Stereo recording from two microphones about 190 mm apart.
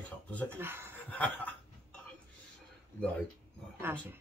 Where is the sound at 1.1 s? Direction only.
10° left (ahead or behind).